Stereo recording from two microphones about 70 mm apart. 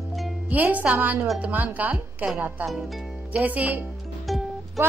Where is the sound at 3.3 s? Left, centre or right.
Right.